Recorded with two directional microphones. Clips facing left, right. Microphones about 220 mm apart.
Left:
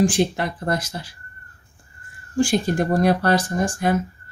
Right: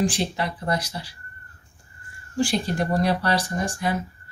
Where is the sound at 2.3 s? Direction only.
45° left (ahead or behind).